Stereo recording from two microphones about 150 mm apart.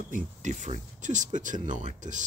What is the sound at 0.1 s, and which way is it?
Speech, 55° right (ahead or behind).